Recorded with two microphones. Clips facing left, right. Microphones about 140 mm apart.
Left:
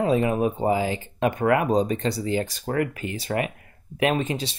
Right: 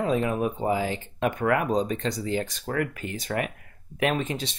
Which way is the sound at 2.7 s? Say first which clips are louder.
Left 3 dB; 30° left (ahead or behind).